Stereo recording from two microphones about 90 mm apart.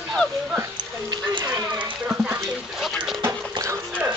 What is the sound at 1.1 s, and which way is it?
Rain, 60° right (ahead or behind).